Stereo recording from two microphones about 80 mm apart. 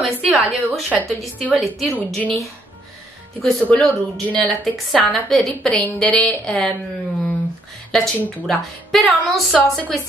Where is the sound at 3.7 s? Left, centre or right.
Centre.